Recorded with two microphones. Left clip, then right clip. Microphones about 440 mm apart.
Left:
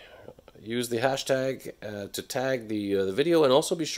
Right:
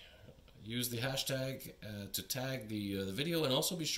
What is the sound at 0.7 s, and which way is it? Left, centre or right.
Speech, centre.